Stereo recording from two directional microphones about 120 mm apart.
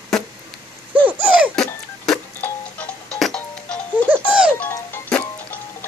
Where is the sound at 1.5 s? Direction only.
5° left (ahead or behind).